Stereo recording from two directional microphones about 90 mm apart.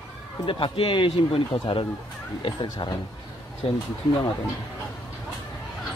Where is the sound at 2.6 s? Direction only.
50° left (ahead or behind).